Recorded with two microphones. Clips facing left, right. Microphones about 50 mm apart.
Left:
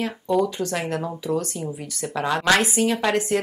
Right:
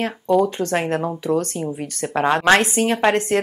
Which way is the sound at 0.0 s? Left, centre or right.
Right.